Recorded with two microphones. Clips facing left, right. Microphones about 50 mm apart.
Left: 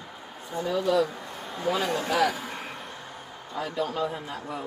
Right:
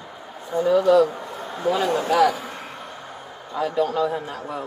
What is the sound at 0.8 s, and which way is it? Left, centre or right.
Speech, right.